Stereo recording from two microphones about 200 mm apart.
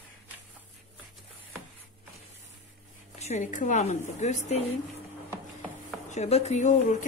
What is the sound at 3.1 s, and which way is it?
Speech, 35° left (ahead or behind).